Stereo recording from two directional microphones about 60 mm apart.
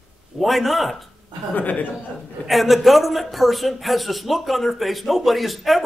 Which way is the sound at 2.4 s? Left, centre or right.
Centre.